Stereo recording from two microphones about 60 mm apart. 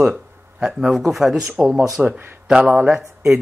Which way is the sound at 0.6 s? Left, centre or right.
Centre.